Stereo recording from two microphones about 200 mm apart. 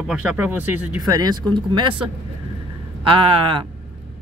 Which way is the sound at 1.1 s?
20° right (ahead or behind).